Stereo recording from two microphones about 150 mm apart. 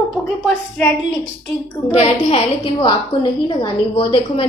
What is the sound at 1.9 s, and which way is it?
A woman's voice, 45° left (ahead or behind).